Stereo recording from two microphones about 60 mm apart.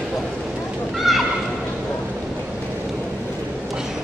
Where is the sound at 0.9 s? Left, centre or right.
Centre.